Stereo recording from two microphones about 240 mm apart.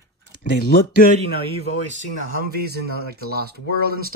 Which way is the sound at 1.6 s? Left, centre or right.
Right.